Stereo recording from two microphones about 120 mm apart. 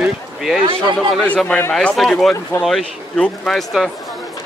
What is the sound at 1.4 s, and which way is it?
Speech, 10° left (ahead or behind).